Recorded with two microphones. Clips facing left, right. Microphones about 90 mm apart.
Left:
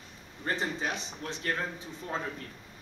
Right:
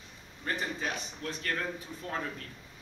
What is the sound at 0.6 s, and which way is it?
Speech, 25° left (ahead or behind).